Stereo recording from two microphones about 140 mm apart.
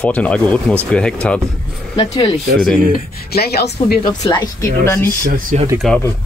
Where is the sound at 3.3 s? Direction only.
90° left.